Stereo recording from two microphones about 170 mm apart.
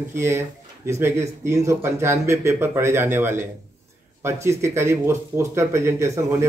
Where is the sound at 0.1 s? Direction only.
15° right (ahead or behind).